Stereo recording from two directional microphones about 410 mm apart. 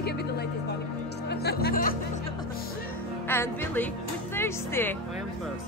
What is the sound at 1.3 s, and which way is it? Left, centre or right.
Speech, left.